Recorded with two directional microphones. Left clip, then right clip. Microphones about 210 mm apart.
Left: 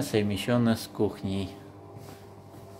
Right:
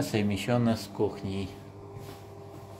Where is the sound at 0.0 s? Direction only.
15° left (ahead or behind).